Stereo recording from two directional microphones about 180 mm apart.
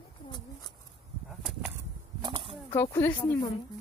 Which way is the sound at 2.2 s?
25° right (ahead or behind).